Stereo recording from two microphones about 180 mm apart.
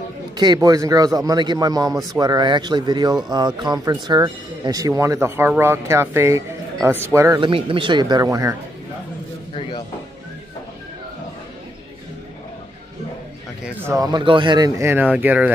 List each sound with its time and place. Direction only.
0.4 s speech: 20° right (ahead or behind)
7.3 s speech: 25° right (ahead or behind)
13.9 s speech: 25° right (ahead or behind)